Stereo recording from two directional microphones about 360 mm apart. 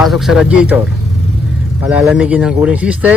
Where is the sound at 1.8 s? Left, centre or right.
Centre.